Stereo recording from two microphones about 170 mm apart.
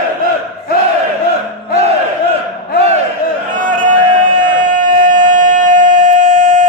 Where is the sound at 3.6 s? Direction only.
50° right (ahead or behind).